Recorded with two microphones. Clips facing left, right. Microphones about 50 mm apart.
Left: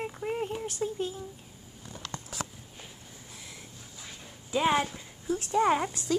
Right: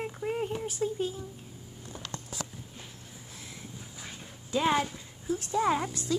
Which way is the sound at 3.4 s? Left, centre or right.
Centre.